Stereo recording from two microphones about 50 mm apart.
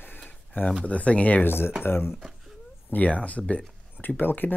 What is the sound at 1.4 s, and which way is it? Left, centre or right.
Speech, left.